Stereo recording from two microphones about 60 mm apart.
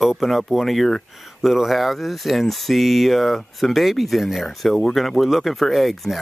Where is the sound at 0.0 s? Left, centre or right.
Centre.